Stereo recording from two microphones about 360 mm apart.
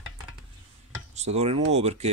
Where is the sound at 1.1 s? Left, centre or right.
Centre.